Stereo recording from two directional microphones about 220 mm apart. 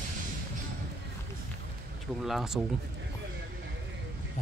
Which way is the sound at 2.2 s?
Centre (ahead or behind).